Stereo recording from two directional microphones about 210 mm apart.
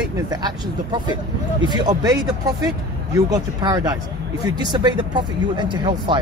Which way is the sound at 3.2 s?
15° right (ahead or behind).